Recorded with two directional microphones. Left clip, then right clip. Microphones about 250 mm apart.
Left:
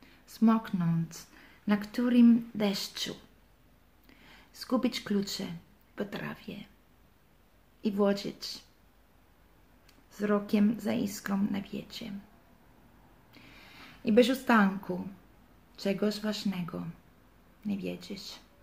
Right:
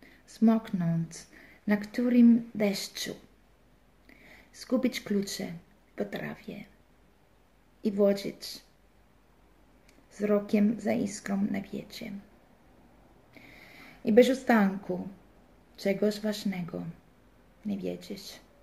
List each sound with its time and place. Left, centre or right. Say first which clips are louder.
0.0 s speech: right 1 dB; left
4.3 s speech: right 1 dB; left
7.8 s speech: right 3 dB; left
10.1 s speech: right 2 dB; left
13.3 s a sound: right 2 dB; left
15.7 s speech: right 3 dB; left